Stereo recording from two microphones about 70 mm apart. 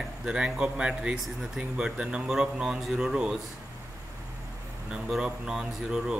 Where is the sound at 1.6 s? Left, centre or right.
Centre.